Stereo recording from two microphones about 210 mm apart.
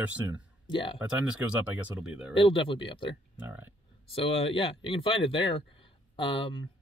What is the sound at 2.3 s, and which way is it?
Speech, 25° left (ahead or behind).